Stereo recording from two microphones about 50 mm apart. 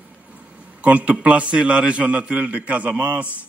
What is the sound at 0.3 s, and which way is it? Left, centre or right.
A man's voice, right.